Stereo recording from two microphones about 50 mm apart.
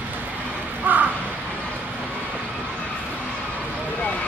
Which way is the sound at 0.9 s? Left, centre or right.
Right.